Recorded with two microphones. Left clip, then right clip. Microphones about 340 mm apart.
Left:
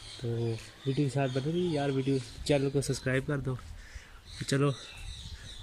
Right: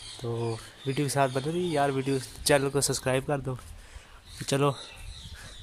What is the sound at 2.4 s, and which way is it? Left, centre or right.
A man's voice, centre.